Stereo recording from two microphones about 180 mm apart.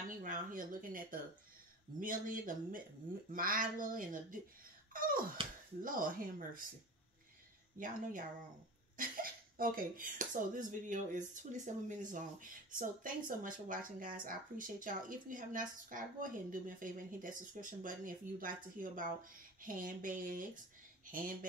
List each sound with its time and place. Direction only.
0.2 s speech: 45° right (ahead or behind)
4.9 s a sound: 50° right (ahead or behind)
5.8 s speech: 50° right (ahead or behind)
7.8 s speech: 50° right (ahead or behind)